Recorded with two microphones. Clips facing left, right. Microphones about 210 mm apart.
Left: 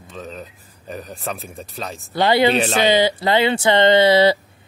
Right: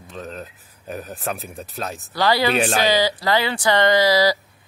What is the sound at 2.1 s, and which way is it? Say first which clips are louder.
Speech: left 3 dB; 20° left (ahead or behind).